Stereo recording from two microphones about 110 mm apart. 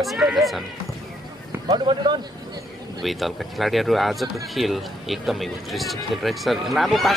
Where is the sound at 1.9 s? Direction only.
50° right (ahead or behind).